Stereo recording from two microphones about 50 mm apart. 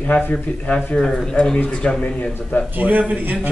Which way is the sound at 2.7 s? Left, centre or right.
Right.